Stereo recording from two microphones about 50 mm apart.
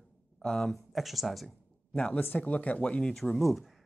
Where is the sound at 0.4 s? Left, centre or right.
Centre.